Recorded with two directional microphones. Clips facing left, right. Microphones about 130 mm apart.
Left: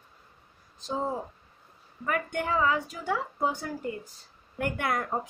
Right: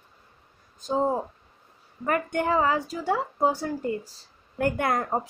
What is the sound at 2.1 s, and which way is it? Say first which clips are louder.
A woman's voice: right 5 dB; 40° right (ahead or behind).